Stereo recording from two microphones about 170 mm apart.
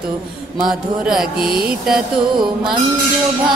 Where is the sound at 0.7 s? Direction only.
Centre (ahead or behind).